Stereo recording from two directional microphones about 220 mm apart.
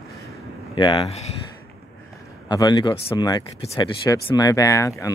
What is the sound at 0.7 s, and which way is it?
Speech, 20° left (ahead or behind).